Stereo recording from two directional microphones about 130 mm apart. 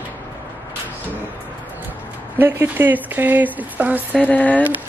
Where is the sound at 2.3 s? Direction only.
15° right (ahead or behind).